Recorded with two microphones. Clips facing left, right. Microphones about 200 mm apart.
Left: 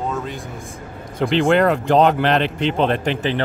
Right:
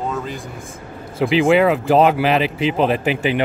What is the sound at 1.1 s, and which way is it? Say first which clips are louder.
Speech: right 2 dB; centre (ahead or behind).